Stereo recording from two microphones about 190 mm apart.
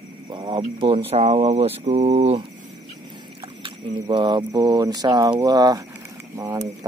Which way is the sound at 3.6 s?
25° right (ahead or behind).